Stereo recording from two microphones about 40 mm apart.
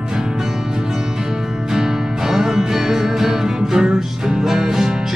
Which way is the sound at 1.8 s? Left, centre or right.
Centre.